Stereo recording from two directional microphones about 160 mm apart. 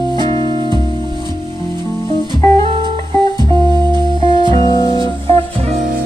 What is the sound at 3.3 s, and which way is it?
Music, 25° right (ahead or behind).